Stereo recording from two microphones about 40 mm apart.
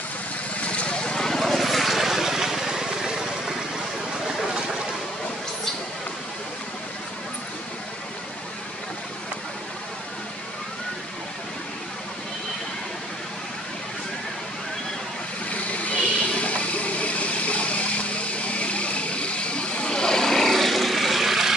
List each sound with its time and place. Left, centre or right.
0.6 s vehicle: left; by 3.5 s centre
15.5 s vehicle: left; by 21.5 s centre